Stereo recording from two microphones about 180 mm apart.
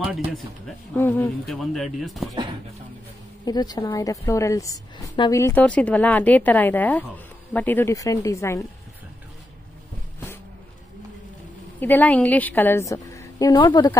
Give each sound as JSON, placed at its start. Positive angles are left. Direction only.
{"t": 0.9, "sound": "a woman's voice", "side_deg": 15}
{"t": 1.5, "sound": "speech", "side_deg": 0}
{"t": 3.4, "sound": "a woman's voice", "side_deg": 20}
{"t": 11.8, "sound": "a woman's voice", "side_deg": 10}